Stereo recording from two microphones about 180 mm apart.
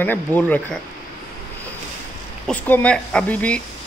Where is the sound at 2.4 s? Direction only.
5° left (ahead or behind).